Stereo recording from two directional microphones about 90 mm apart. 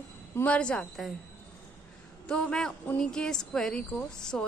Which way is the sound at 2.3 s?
10° left (ahead or behind).